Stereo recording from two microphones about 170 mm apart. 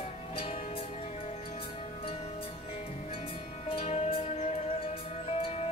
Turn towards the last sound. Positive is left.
turn(degrees=35)  # may be behind; listen again after turning